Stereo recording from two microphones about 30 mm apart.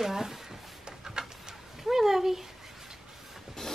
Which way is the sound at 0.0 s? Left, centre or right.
Centre.